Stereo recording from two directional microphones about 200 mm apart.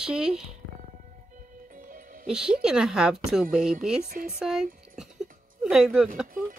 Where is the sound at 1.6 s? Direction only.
40° right (ahead or behind).